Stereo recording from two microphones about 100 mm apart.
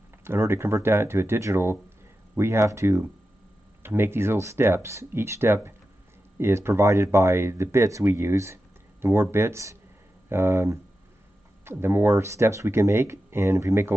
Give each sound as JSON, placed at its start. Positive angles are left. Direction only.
{"t": 0.2, "sound": "speech", "side_deg": -25}